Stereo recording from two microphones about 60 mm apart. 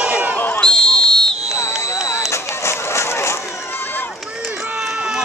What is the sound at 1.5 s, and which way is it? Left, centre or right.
Vehicle, left.